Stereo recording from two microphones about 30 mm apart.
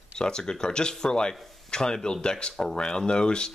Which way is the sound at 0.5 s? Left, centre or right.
Left.